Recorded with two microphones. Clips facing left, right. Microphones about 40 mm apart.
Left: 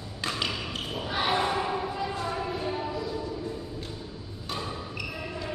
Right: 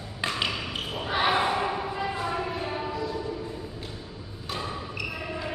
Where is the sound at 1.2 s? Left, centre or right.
Centre.